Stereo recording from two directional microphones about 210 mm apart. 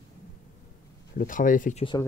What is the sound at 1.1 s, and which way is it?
Speech, 40° left (ahead or behind).